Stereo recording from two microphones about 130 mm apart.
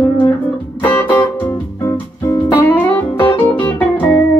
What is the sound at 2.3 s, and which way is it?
Music, 15° left (ahead or behind).